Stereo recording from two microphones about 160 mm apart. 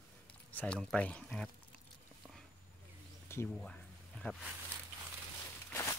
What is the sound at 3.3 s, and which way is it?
Speech, 15° left (ahead or behind).